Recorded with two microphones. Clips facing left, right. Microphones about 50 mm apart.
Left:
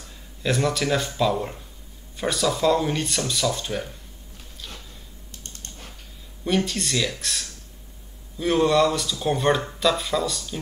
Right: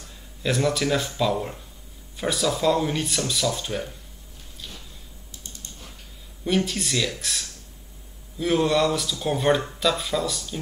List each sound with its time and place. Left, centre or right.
0.4 s speech: centre
5.3 s typing: left
6.4 s speech: centre